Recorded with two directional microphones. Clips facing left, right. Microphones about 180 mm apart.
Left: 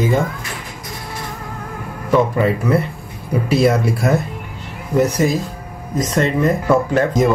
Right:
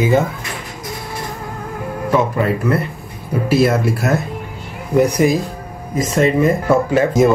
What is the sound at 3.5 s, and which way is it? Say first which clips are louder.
Speech: right 1 dB; 5° right (ahead or behind).